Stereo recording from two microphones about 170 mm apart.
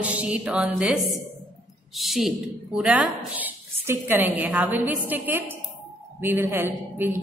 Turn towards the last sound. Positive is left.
turn(degrees=-10)  # may be behind; listen again after turning